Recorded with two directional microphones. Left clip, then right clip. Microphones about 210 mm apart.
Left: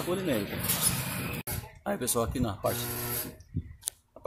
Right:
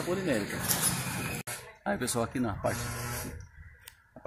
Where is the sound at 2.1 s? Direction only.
10° left (ahead or behind).